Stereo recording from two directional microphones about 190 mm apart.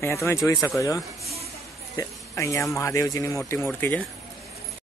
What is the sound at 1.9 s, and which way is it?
Speech, 15° left (ahead or behind).